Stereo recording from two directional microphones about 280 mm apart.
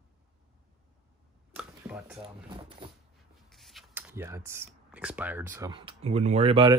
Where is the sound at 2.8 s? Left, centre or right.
Centre.